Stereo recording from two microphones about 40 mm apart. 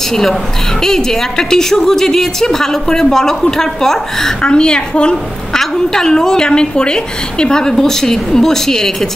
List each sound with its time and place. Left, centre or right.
0.1 s a woman's voice: centre
1.5 s a woman's voice: centre
4.5 s a woman's voice: left
5.5 s a woman's voice: centre